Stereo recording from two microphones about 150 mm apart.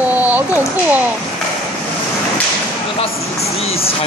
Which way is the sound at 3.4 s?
45° left (ahead or behind).